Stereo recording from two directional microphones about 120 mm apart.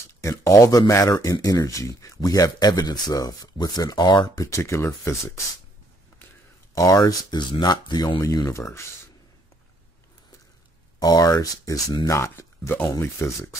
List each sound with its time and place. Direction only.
0.2 s speech: 25° left (ahead or behind)
4.5 s speech: 25° left (ahead or behind)
6.7 s speech: 30° left (ahead or behind)
11.0 s speech: 35° left (ahead or behind)